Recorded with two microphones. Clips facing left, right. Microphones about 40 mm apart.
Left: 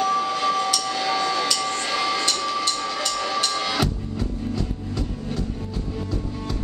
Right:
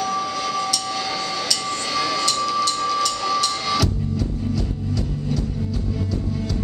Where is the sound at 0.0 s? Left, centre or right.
Left.